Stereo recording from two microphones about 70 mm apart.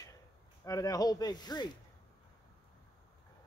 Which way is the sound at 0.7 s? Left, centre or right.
Left.